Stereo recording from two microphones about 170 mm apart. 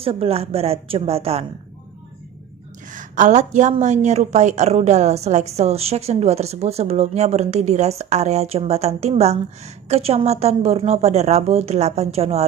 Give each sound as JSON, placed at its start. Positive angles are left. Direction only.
{"t": 0.0, "sound": "a woman's voice", "side_deg": -35}
{"t": 2.9, "sound": "a woman's voice", "side_deg": -50}